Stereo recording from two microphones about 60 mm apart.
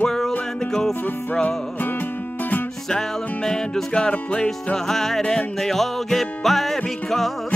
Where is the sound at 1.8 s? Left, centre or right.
Left.